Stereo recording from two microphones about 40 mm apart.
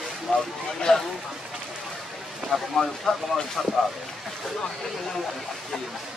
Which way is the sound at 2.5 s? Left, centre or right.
Centre.